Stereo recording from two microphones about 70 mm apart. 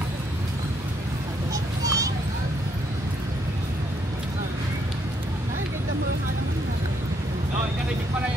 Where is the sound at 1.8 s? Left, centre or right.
Right.